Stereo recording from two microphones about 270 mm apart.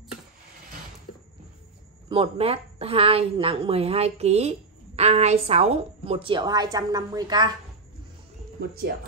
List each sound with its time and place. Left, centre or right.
2.0 s a woman's voice: centre
8.5 s speech: right